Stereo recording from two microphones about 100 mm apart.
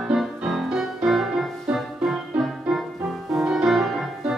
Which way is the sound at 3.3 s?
5° right (ahead or behind).